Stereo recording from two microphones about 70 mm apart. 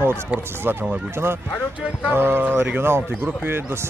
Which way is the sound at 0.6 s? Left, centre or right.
Right.